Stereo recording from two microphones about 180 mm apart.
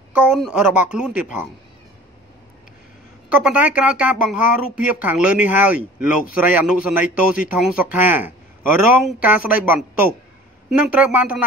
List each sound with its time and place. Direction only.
0.1 s a woman's voice: 5° right (ahead or behind)
3.3 s a woman's voice: 5° right (ahead or behind)